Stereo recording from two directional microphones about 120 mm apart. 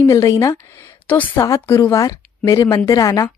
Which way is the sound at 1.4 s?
25° left (ahead or behind).